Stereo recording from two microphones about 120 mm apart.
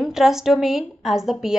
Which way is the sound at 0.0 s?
5° right (ahead or behind).